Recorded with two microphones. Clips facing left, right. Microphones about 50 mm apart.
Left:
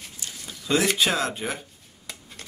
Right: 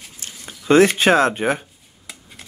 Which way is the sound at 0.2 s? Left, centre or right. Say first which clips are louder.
Right 3 dB; right.